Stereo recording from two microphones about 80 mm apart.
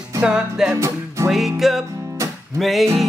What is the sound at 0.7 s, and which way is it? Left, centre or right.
Music, right.